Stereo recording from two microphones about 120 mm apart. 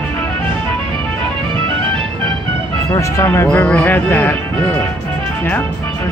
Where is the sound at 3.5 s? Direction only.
10° left (ahead or behind).